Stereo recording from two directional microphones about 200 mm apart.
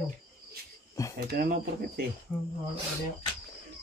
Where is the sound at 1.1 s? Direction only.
50° right (ahead or behind).